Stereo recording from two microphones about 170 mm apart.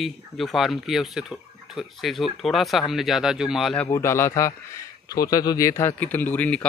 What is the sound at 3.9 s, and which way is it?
Speech, 15° left (ahead or behind).